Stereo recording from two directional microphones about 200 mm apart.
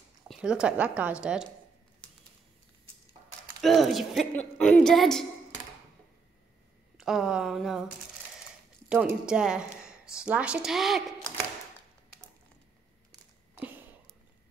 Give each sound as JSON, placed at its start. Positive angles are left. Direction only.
{"t": 0.3, "sound": "a woman's voice", "side_deg": -5}
{"t": 3.6, "sound": "a woman's voice", "side_deg": 0}
{"t": 7.0, "sound": "a woman's voice", "side_deg": 0}
{"t": 8.8, "sound": "speech", "side_deg": -5}